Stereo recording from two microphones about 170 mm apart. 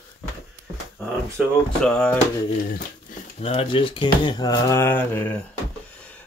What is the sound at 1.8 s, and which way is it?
Music, 5° left (ahead or behind).